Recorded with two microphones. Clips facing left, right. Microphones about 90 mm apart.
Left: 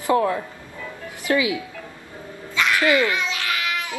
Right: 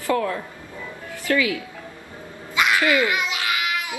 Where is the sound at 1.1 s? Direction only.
20° left (ahead or behind).